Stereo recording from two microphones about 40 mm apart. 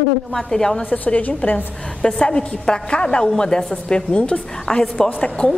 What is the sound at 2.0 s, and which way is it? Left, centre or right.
A woman's voice, left.